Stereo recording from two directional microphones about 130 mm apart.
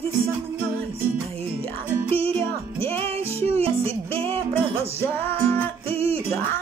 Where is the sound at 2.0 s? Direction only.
50° right (ahead or behind).